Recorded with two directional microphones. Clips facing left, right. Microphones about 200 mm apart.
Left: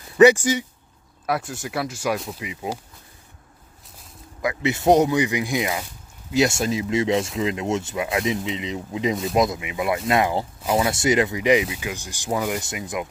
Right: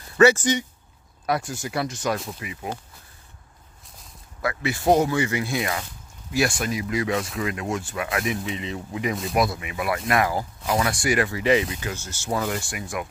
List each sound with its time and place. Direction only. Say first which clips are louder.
0.2 s speech: left 3 dB; 15° left (ahead or behind)
1.2 s speech: even; 5° left (ahead or behind)
2.4 s speech: left 3 dB; 15° left (ahead or behind)
4.4 s speech: left 3 dB; 20° left (ahead or behind)